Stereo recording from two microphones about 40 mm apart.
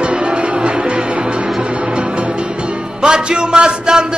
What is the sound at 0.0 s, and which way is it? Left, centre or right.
Music, right.